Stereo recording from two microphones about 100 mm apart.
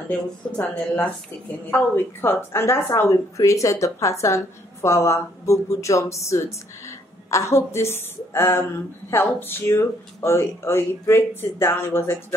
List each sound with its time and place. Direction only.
0.1 s a woman's voice: 15° left (ahead or behind)